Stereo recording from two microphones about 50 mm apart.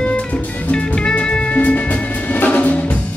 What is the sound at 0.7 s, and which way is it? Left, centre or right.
Music, centre.